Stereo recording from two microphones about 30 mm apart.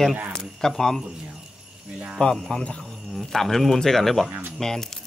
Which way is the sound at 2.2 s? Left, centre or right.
Left.